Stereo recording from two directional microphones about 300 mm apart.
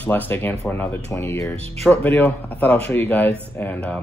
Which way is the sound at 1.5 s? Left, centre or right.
Centre.